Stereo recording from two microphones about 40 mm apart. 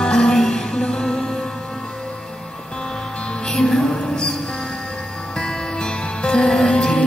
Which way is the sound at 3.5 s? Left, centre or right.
Centre.